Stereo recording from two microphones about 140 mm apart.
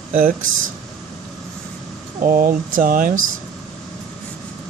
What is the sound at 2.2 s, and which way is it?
Speech, 90° right.